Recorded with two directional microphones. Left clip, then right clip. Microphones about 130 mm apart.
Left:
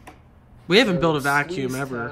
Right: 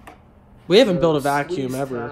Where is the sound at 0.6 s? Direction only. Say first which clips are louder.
Right 3 dB; 20° right (ahead or behind).